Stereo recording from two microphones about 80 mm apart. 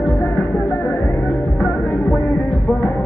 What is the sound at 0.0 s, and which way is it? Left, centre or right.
Music, centre.